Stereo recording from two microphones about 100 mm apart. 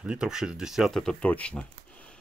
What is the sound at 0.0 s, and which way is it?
Speech, 10° right (ahead or behind).